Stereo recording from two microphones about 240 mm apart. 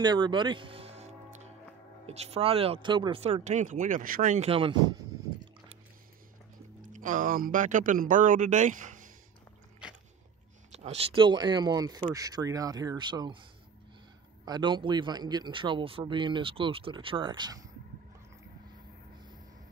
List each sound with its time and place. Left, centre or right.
0.0 s music: centre
2.0 s speech: right
6.8 s speech: right
10.7 s speech: right
14.4 s speech: centre